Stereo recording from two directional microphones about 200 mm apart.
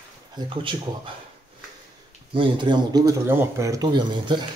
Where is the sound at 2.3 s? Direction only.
25° right (ahead or behind).